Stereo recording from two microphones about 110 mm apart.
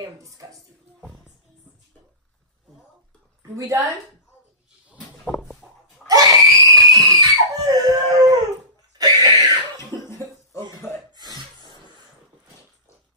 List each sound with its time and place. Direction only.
0.2 s speech: 30° right (ahead or behind)
3.5 s a woman's voice: 30° right (ahead or behind)
5.2 s a sound: 5° left (ahead or behind)
6.0 s screaming: 35° right (ahead or behind)
8.9 s cough: 35° right (ahead or behind)
10.0 s cough: 25° left (ahead or behind)
11.1 s cough: 40° right (ahead or behind)